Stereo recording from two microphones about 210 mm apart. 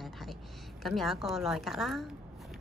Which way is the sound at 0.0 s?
Centre (ahead or behind).